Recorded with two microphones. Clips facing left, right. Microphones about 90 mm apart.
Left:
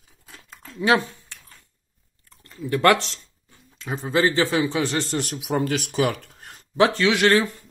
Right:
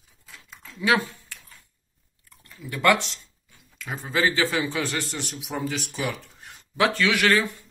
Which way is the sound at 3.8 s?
25° left (ahead or behind).